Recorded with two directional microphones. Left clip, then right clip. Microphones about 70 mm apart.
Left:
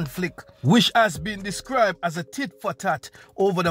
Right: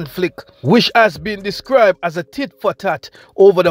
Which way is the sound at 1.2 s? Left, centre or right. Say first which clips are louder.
Right 9 dB; right.